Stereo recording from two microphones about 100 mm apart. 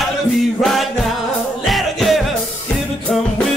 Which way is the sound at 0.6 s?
Centre (ahead or behind).